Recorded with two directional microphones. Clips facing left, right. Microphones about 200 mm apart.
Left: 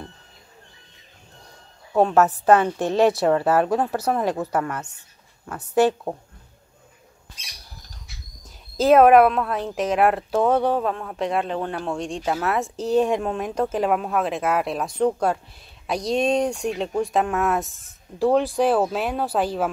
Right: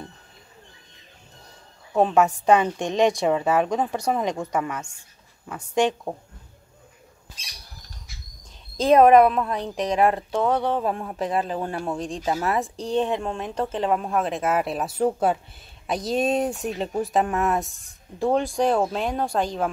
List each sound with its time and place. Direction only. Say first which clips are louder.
2.1 s a woman's voice: left 2 dB; 15° right (ahead or behind)
3.0 s speech: left 2 dB; 5° left (ahead or behind)
4.6 s a woman's voice: left 1 dB; 10° right (ahead or behind)
5.8 s speech: left 3 dB; 5° left (ahead or behind)
8.7 s speech: left 1 dB; 5° left (ahead or behind)
10.4 s speech: left 3 dB; 15° left (ahead or behind)
10.8 s a woman's voice: left 1 dB; 15° right (ahead or behind)
11.1 s speech: left 1 dB; centre (ahead or behind)